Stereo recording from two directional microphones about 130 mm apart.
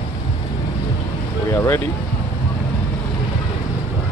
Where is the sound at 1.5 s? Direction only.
20° left (ahead or behind).